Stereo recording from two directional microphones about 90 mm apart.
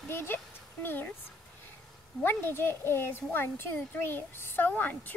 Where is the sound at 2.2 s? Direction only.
25° left (ahead or behind).